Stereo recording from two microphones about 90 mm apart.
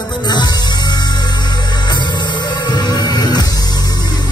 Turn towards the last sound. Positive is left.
turn(degrees=50)  # may be behind; listen again after turning